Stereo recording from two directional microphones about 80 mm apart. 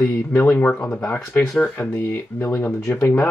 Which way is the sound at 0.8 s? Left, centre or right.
Centre.